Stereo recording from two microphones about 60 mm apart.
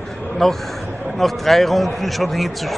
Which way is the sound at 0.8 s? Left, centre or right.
Right.